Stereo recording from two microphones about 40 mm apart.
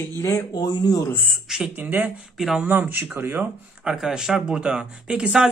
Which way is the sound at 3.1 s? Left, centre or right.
Right.